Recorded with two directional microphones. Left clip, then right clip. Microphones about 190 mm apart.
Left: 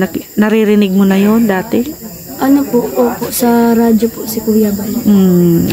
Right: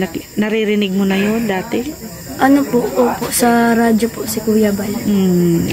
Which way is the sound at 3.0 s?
15° right (ahead or behind).